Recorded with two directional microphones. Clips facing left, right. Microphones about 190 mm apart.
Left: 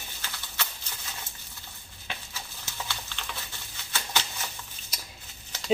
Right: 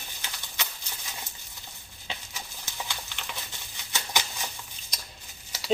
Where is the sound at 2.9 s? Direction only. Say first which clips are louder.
Even; 15° right (ahead or behind).